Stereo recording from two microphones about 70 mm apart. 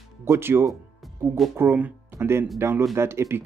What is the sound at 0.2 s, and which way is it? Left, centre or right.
Speech, right.